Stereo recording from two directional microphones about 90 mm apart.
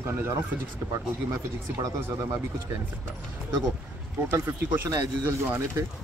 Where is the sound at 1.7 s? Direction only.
35° right (ahead or behind).